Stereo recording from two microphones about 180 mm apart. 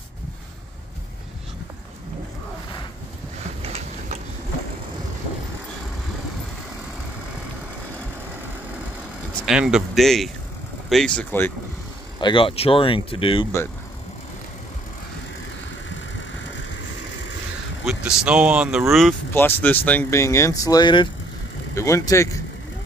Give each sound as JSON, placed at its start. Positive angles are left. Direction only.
{"t": 3.6, "sound": "a sound", "side_deg": -35}
{"t": 9.5, "sound": "speech", "side_deg": -5}
{"t": 12.2, "sound": "speech", "side_deg": 25}
{"t": 17.8, "sound": "speech", "side_deg": -5}
{"t": 19.3, "sound": "speech", "side_deg": 10}